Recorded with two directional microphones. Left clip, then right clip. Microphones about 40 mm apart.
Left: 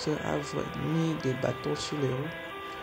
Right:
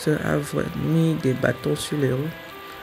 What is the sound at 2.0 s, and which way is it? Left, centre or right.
Speech, centre.